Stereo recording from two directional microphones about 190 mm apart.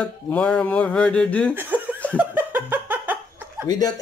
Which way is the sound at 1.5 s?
10° right (ahead or behind).